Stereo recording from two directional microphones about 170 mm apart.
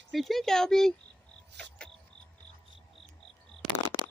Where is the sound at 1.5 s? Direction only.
90° right.